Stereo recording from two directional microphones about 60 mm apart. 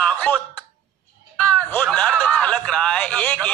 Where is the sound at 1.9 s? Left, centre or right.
Centre.